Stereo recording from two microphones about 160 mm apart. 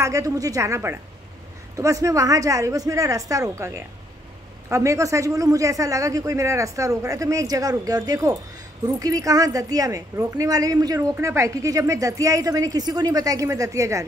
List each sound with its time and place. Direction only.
0.0 s a woman's voice: 20° right (ahead or behind)